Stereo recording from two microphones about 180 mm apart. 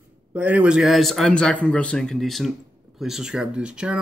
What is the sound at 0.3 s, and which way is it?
Speech, 10° right (ahead or behind).